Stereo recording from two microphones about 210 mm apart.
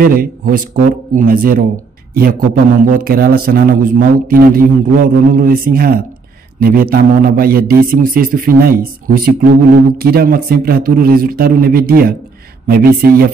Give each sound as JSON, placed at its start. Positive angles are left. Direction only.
{"t": 0.0, "sound": "a man's voice", "side_deg": -45}